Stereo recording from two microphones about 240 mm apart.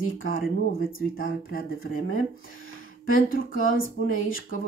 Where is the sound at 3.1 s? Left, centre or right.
Left.